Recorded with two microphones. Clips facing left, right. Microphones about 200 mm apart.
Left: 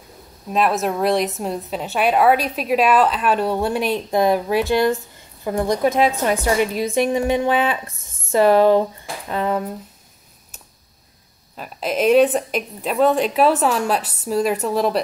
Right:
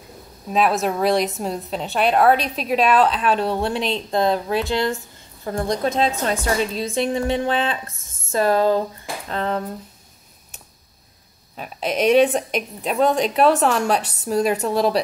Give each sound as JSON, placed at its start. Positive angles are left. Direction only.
{"t": 0.5, "sound": "a woman's voice", "side_deg": 0}
{"t": 11.5, "sound": "a woman's voice", "side_deg": 0}